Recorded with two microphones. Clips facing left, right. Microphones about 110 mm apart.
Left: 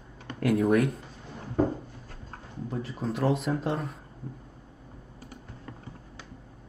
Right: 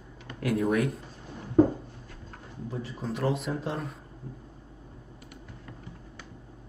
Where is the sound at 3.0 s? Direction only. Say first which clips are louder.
Left 3 dB; centre (ahead or behind).